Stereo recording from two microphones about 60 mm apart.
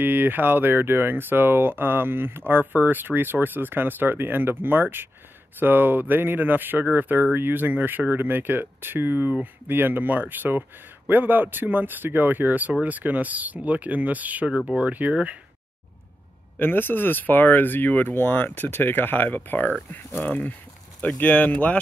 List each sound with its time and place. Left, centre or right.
0.0 s speech: right
16.5 s speech: left
21.2 s speech: left